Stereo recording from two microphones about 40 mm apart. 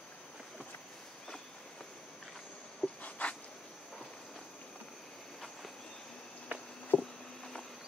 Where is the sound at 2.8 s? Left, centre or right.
Left.